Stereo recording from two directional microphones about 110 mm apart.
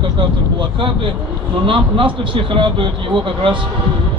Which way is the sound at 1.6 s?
50° right (ahead or behind).